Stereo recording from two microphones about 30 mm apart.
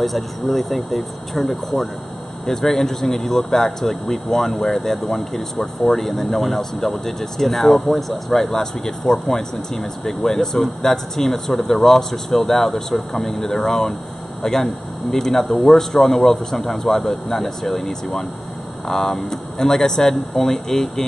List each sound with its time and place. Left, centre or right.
0.0 s speech: centre
2.4 s speech: centre